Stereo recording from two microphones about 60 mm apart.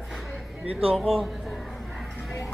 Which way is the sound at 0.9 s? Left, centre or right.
Centre.